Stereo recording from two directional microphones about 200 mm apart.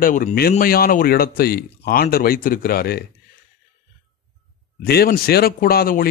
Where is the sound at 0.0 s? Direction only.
45° left (ahead or behind).